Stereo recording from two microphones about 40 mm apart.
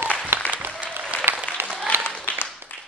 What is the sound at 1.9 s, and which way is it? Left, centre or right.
Applause, left.